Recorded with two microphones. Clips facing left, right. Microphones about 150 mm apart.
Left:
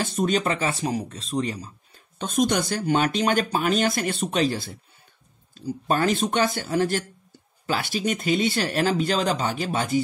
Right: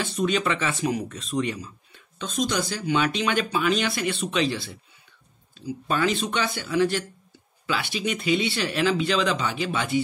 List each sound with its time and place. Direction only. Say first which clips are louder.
0.0 s speech: left 1 dB; 45° left (ahead or behind)
2.1 s speech: left 4 dB; 50° left (ahead or behind)